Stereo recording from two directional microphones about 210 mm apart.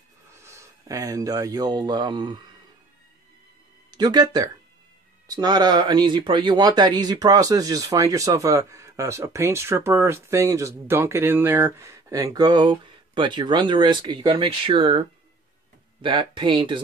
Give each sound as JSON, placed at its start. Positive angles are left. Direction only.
{"t": 0.3, "sound": "speech", "side_deg": -15}
{"t": 3.9, "sound": "speech", "side_deg": -20}